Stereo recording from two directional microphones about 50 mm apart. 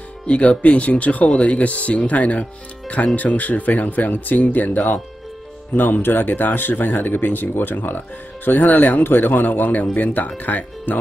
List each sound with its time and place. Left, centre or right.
0.3 s speech: left
6.0 s speech: left